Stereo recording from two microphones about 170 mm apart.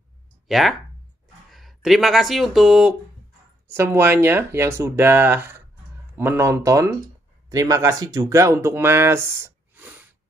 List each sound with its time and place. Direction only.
0.5 s speech: centre (ahead or behind)
3.6 s speech: 15° right (ahead or behind)